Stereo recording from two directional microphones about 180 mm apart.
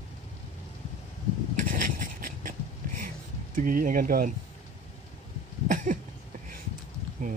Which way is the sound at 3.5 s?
50° right (ahead or behind).